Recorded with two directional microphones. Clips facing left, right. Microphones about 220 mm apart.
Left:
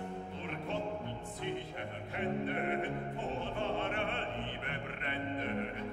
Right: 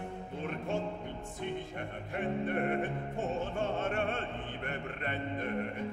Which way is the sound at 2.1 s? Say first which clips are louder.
Right 3 dB; 45° right (ahead or behind).